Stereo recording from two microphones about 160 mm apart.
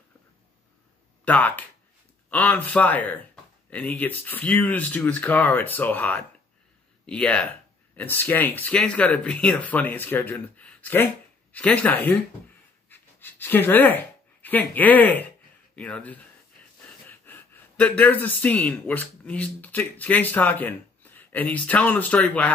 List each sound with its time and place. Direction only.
1.2 s speech: 10° left (ahead or behind)
12.9 s pant: 15° left (ahead or behind)
14.4 s speech: 10° left (ahead or behind)